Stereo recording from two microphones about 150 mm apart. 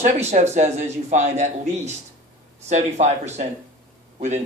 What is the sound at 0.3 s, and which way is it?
A man's voice, 50° right (ahead or behind).